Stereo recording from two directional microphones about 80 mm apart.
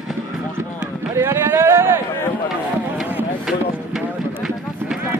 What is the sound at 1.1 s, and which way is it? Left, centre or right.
Run, right.